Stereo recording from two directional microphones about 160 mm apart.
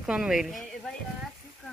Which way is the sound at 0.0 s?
5° right (ahead or behind).